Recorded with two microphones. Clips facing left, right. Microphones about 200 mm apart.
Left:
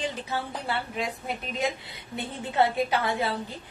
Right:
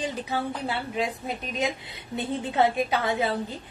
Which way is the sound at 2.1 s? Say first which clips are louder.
Right 1 dB; 20° right (ahead or behind).